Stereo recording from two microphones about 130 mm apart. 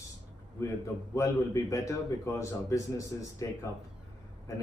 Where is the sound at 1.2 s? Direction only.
25° left (ahead or behind).